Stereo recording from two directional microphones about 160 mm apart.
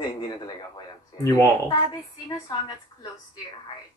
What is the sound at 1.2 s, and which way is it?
Speech, 15° left (ahead or behind).